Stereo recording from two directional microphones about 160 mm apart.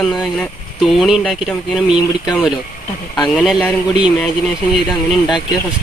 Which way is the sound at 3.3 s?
Centre (ahead or behind).